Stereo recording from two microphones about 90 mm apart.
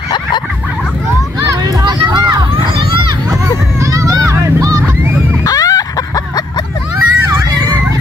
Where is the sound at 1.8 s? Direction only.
50° right (ahead or behind).